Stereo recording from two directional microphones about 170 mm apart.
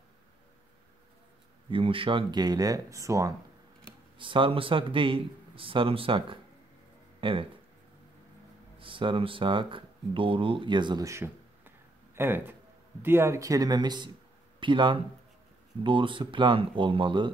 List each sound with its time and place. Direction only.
1.7 s speech: 30° right (ahead or behind)
4.2 s a man's voice: 30° right (ahead or behind)
8.7 s speech: 30° right (ahead or behind)